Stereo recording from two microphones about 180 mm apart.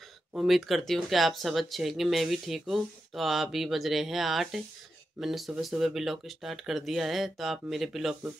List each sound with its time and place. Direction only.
0.3 s speech: centre (ahead or behind)